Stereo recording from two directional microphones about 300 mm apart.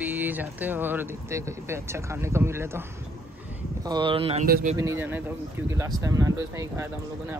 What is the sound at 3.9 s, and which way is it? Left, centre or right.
Speech, centre.